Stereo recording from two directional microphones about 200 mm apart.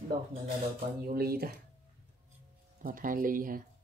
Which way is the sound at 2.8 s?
45° right (ahead or behind).